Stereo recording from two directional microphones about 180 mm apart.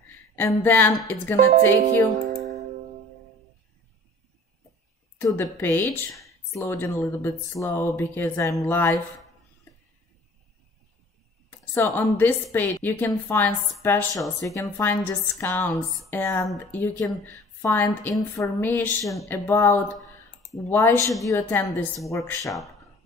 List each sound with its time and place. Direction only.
0.4 s speech: 10° left (ahead or behind)
1.3 s speech: 45° right (ahead or behind)
5.2 s speech: 15° left (ahead or behind)
11.7 s speech: 15° left (ahead or behind)